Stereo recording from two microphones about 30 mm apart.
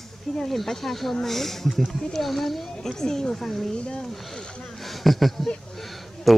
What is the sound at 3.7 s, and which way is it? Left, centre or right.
Speech, left.